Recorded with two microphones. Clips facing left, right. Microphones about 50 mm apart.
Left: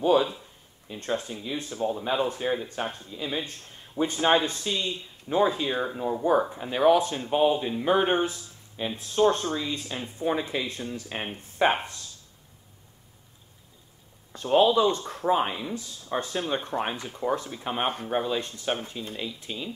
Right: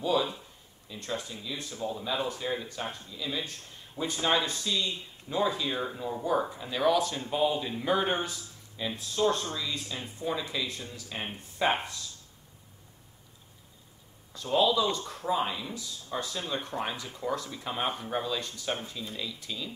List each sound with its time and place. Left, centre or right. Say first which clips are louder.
0.0 s a sound: left 6 dB; left
0.8 s speech: left 6 dB; left
14.3 s speech: left 5 dB; left